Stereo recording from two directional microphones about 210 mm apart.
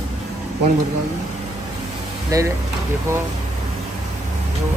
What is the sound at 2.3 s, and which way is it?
Speech, 15° right (ahead or behind).